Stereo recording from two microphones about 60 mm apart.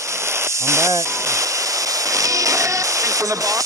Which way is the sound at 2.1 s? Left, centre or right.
Right.